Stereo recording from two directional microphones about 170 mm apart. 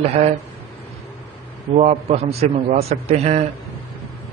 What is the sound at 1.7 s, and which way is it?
A man's voice, 40° right (ahead or behind).